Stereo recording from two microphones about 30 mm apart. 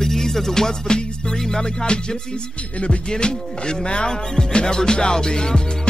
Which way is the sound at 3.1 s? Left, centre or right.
Left.